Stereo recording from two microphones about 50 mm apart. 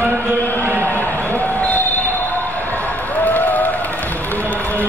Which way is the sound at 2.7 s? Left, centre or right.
Left.